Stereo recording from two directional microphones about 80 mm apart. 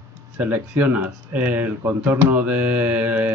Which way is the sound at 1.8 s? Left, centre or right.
Right.